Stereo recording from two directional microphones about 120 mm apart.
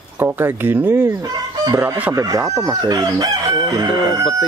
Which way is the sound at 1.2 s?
35° right (ahead or behind).